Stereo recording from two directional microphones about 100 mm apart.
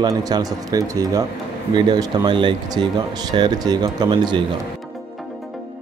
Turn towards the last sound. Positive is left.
turn(degrees=-50)  # may be behind; listen again after turning